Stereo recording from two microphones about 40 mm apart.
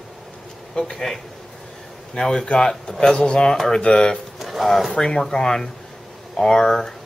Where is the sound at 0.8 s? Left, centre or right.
Centre.